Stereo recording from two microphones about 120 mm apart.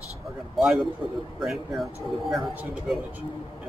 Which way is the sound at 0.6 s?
Centre (ahead or behind).